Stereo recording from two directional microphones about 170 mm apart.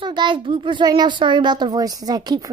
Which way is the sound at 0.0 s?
25° right (ahead or behind).